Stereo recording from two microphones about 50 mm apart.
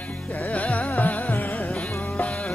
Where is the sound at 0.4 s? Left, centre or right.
Left.